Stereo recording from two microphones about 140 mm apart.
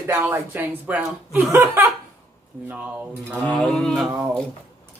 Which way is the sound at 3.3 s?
5° left (ahead or behind).